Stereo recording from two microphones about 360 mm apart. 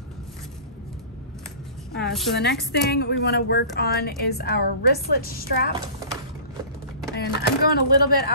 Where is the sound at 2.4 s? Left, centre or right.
Left.